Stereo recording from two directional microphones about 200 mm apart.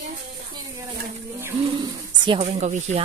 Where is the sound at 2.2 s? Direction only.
30° right (ahead or behind).